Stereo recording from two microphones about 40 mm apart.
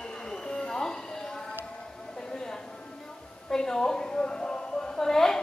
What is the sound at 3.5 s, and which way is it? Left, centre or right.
A woman's voice, centre.